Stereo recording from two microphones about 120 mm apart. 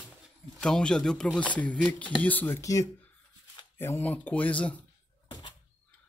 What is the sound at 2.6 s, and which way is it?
Speech, 25° left (ahead or behind).